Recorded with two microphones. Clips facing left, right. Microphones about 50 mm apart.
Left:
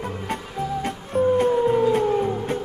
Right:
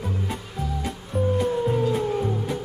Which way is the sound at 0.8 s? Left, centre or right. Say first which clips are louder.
Left 5 dB; left.